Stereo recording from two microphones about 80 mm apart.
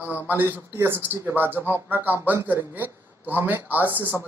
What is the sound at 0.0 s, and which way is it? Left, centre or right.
Speech, right.